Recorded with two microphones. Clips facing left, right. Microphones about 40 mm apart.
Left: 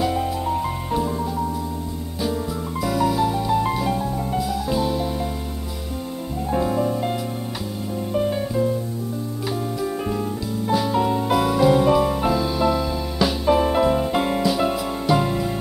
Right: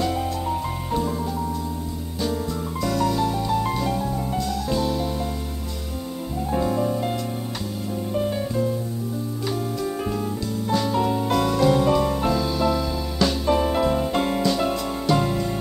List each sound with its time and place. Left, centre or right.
0.0 s music: centre
2.8 s music: centre
6.5 s music: centre
10.7 s music: centre